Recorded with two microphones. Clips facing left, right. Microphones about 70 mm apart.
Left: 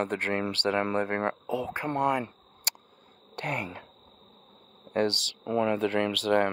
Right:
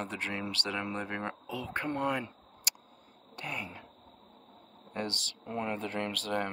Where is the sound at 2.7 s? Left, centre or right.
Left.